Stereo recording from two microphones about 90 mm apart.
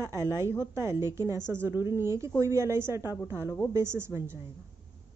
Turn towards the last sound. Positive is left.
turn(degrees=-25)  # may be behind; listen again after turning